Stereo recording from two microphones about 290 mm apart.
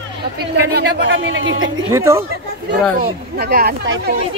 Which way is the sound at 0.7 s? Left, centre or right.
Right.